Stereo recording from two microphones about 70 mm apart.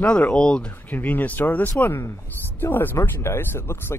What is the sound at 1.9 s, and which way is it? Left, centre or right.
Speech, left.